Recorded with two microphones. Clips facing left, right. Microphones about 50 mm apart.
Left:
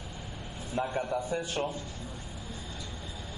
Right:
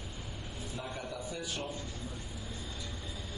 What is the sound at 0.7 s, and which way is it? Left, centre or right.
Speech, left.